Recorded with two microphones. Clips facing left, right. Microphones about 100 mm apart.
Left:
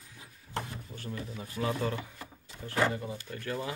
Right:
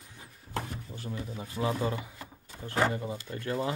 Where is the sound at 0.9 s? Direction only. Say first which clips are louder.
Right 1 dB; 20° right (ahead or behind).